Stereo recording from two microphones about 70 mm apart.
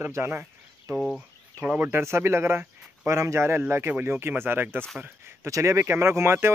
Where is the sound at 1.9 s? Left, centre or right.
Right.